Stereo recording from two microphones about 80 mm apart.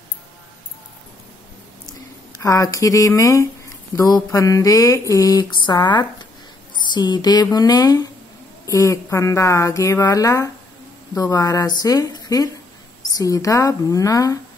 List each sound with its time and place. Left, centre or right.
2.3 s speech: left
6.9 s a sound: left
7.5 s speech: left